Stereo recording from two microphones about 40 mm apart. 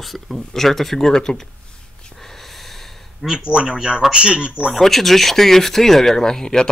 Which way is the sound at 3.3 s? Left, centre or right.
Right.